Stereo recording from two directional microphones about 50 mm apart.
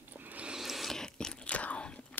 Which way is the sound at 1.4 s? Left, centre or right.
Left.